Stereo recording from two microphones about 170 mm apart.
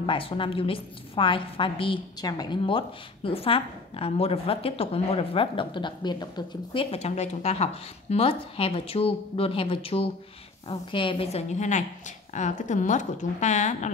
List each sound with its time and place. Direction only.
0.0 s a woman's voice: 30° left (ahead or behind)